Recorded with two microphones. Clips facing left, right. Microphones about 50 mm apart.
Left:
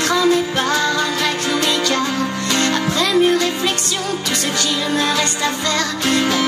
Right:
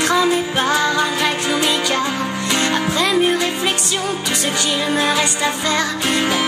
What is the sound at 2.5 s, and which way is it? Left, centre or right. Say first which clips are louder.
Music: even; centre.